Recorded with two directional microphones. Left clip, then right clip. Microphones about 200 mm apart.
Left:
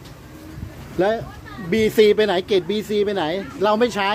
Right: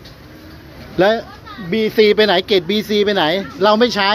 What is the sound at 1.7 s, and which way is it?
Speech, 20° left (ahead or behind).